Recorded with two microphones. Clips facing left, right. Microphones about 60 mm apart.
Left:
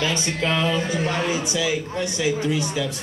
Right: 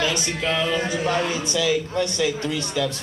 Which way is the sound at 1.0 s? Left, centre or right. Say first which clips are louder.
Right 1 dB; centre.